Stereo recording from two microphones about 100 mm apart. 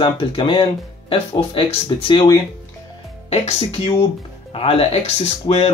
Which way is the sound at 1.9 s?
50° left (ahead or behind).